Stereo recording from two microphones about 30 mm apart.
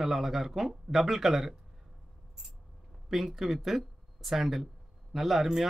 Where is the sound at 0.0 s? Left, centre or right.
Centre.